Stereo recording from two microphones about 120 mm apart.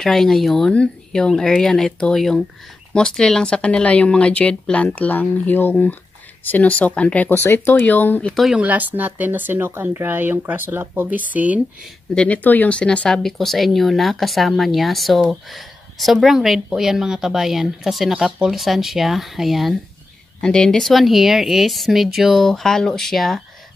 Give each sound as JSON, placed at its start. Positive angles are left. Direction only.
{"t": 0.0, "sound": "speech", "side_deg": 5}
{"t": 8.3, "sound": "speech", "side_deg": 0}
{"t": 8.5, "sound": "speech", "side_deg": -15}
{"t": 12.2, "sound": "speech", "side_deg": 15}